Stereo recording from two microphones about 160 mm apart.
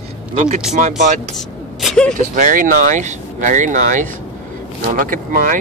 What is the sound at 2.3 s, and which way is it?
Speech, 55° right (ahead or behind).